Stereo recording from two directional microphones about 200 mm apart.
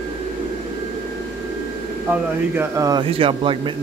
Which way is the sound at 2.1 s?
10° right (ahead or behind).